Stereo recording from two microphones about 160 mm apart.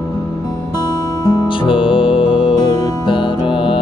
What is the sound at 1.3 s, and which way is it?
Music, 35° left (ahead or behind).